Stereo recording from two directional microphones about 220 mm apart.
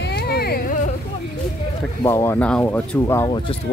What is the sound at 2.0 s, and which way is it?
Speech, 10° left (ahead or behind).